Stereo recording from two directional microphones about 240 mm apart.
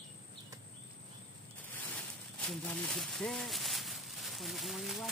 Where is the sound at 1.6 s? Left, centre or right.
Centre.